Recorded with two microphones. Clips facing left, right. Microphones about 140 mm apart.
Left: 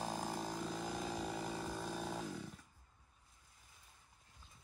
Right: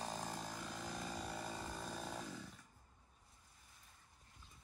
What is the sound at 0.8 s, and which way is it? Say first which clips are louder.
Chainsaw: left 5 dB; 5° left (ahead or behind).